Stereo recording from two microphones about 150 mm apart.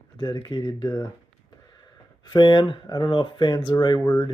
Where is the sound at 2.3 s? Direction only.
30° left (ahead or behind).